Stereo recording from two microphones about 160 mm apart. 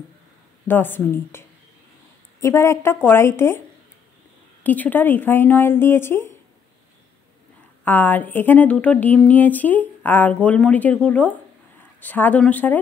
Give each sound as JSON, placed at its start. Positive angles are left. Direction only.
{"t": 0.7, "sound": "speech", "side_deg": 10}
{"t": 2.4, "sound": "speech", "side_deg": 15}
{"t": 4.6, "sound": "speech", "side_deg": 10}
{"t": 7.8, "sound": "speech", "side_deg": 10}